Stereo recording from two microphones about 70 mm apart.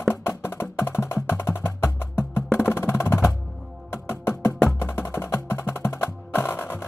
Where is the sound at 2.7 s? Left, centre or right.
Left.